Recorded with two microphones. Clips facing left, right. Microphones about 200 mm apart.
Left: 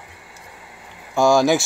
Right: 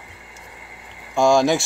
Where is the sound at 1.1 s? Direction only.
5° left (ahead or behind).